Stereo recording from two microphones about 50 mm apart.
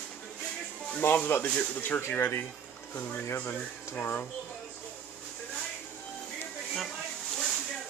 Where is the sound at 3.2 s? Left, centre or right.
Left.